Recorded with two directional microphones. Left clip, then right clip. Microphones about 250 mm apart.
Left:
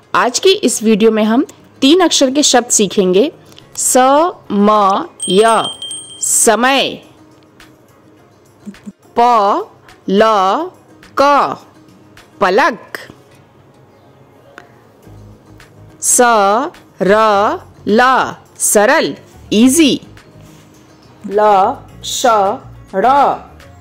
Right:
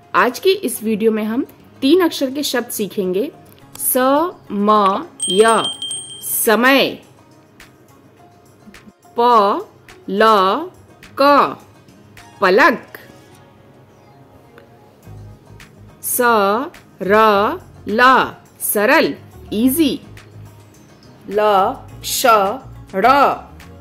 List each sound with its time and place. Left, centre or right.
0.1 s a woman's voice: centre
5.7 s a sound: centre
6.4 s a woman's voice: centre
9.1 s a woman's voice: centre
12.4 s music: centre
16.0 s speech: centre
21.4 s speech: centre